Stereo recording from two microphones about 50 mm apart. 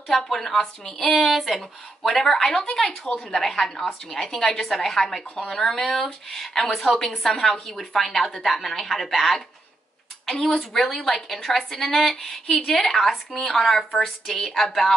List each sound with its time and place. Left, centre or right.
0.1 s speech: centre